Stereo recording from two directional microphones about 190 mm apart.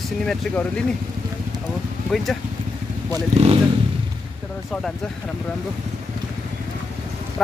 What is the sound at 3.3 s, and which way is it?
Speech, 35° right (ahead or behind).